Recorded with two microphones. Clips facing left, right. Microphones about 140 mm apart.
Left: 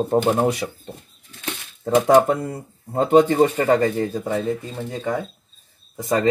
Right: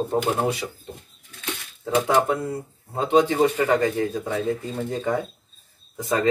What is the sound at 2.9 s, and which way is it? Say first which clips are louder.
Speech: left 4 dB; 45° left (ahead or behind).